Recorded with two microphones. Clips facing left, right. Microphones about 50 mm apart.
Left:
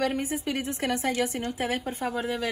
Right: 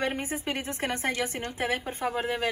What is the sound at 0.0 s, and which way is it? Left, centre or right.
A woman's voice, right.